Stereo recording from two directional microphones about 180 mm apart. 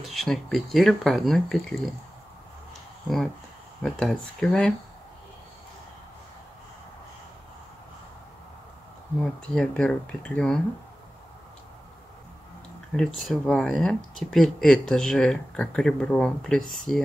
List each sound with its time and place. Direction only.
0.0 s speech: centre (ahead or behind)
3.8 s speech: 5° left (ahead or behind)
9.2 s speech: 5° left (ahead or behind)
12.9 s speech: 5° left (ahead or behind)